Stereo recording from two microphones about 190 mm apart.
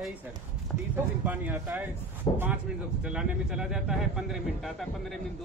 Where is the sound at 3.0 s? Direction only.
5° right (ahead or behind).